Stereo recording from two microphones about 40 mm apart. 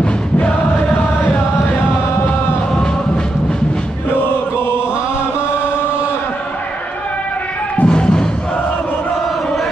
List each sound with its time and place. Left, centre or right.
7.8 s music: left